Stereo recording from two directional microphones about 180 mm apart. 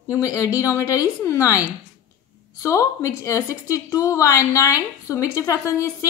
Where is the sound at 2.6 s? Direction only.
15° left (ahead or behind).